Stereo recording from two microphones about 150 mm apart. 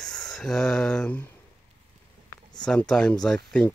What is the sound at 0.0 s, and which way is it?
Speech, 5° left (ahead or behind).